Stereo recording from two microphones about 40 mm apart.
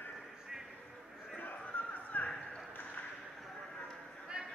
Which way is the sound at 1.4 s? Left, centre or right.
Left.